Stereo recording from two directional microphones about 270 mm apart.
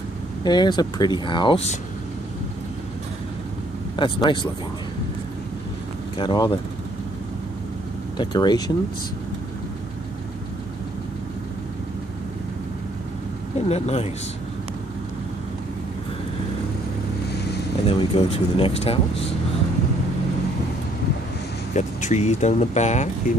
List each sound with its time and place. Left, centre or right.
0.4 s speech: centre
3.9 s speech: centre
6.1 s speech: centre
8.2 s speech: centre
13.7 s speech: left
17.8 s speech: centre
21.7 s speech: left